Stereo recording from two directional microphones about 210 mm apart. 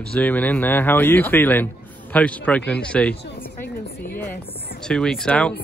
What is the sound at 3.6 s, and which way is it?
Speech, 50° left (ahead or behind).